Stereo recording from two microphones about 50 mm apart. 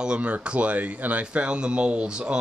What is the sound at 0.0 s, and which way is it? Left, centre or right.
Speech, right.